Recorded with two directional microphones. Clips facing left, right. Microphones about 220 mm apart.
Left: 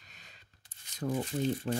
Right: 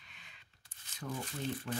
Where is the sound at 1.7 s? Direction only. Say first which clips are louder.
Left 6 dB; 30° left (ahead or behind).